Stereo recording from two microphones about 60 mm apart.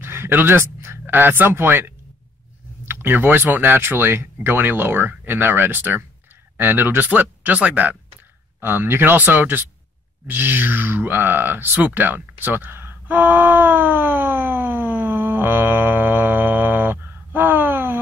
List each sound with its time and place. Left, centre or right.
0.0 s speech: right